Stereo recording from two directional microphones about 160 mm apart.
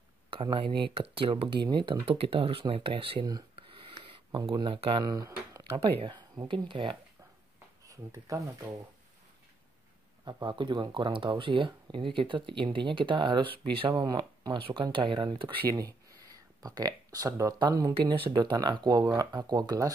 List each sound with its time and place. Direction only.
0.3 s speech: 35° right (ahead or behind)
5.0 s speech: 25° right (ahead or behind)
5.7 s speech: 35° right (ahead or behind)
7.8 s speech: 20° right (ahead or behind)
10.2 s speech: 30° right (ahead or behind)